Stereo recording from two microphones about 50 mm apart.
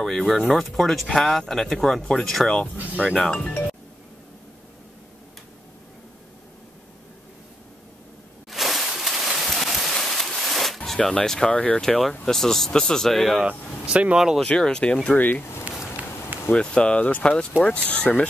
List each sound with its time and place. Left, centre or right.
0.3 s speech: centre
2.7 s speech: right
3.3 s speech: left
8.5 s a sound: centre
11.0 s speech: centre
13.4 s speech: right
14.1 s speech: centre
14.4 s speech: centre
15.0 s speech: left
15.7 s a sound: right
16.5 s speech: left